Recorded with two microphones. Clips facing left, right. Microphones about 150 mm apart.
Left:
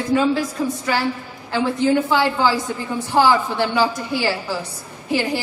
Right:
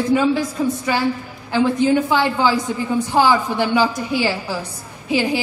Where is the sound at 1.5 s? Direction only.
15° right (ahead or behind).